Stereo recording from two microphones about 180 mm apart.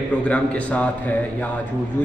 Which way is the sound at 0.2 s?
5° left (ahead or behind).